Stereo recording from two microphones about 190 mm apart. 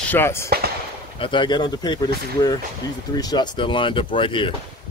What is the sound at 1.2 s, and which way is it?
Speech, 25° left (ahead or behind).